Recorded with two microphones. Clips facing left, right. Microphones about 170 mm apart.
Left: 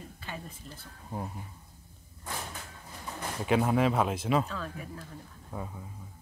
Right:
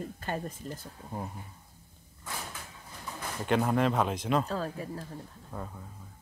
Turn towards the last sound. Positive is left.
turn(degrees=5)  # may be behind; listen again after turning